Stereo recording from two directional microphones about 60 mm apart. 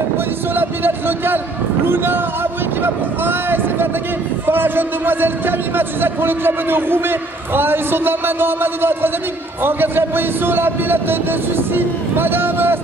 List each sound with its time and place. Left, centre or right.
0.6 s a man's voice: right